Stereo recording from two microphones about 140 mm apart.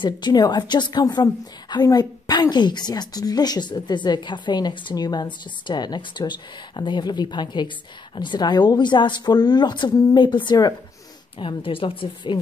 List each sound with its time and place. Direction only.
0.0 s a woman's voice: 30° left (ahead or behind)